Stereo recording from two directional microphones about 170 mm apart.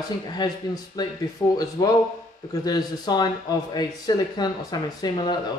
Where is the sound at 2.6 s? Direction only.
25° left (ahead or behind).